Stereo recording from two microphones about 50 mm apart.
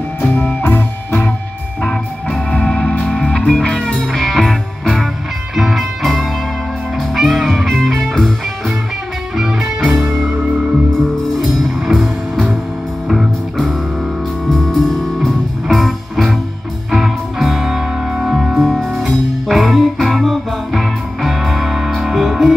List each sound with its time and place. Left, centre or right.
0.6 s music: left
1.8 s music: centre
9.4 s music: centre